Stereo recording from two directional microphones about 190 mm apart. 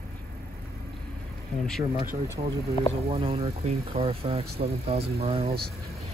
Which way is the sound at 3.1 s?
30° right (ahead or behind).